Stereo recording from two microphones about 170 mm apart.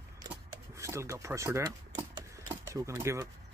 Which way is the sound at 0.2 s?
20° right (ahead or behind).